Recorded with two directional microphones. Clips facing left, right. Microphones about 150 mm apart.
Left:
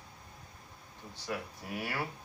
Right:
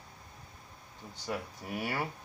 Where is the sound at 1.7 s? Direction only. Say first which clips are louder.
Right 2 dB; 30° right (ahead or behind).